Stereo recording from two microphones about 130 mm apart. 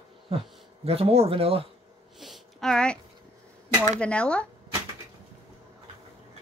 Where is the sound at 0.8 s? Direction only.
50° right (ahead or behind).